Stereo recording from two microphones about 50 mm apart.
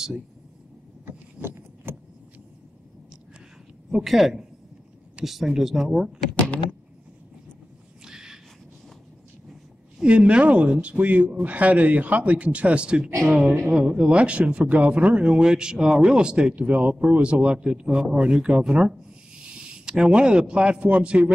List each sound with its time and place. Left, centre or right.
1.0 s vehicle: right
3.9 s a man's voice: centre
8.0 s a sound: centre
10.0 s speech: right